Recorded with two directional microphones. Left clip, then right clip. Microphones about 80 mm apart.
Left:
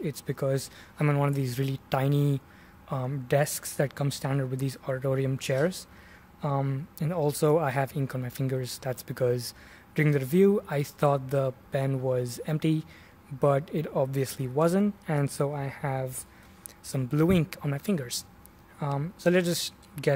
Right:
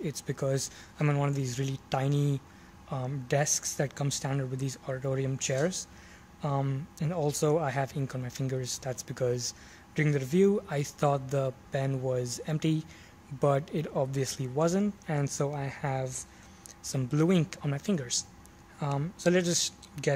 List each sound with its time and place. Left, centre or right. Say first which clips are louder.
0.0 s a man's voice: left 2 dB; left
6.4 s a man's voice: left 2 dB; centre
17.1 s speech: left 2 dB; centre
19.3 s speech: left 1 dB; left